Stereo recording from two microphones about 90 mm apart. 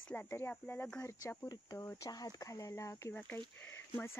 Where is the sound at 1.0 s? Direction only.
35° left (ahead or behind).